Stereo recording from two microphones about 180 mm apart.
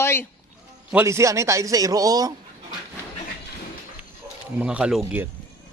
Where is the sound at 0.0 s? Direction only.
15° left (ahead or behind).